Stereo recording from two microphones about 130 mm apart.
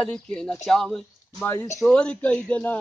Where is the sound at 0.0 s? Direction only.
5° left (ahead or behind).